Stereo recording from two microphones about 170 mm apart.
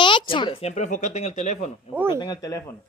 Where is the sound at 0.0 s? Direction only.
30° left (ahead or behind).